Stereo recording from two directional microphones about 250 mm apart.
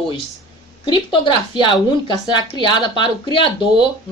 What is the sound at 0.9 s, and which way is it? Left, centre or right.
Speech, centre.